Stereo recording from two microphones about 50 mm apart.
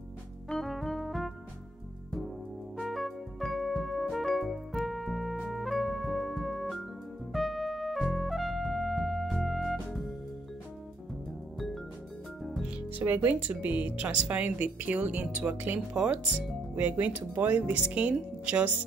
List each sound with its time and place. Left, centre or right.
0.5 s music: centre
2.8 s music: centre
12.6 s music: right
13.0 s speech: right